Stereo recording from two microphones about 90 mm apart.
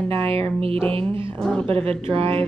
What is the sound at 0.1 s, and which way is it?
Music, 90° right.